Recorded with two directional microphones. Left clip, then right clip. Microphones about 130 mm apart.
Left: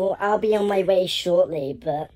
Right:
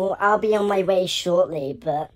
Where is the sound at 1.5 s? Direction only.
75° right (ahead or behind).